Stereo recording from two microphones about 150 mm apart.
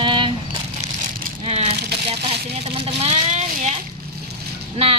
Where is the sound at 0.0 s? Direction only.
35° right (ahead or behind).